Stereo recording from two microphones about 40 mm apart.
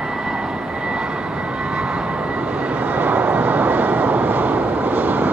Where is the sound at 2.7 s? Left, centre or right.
Right.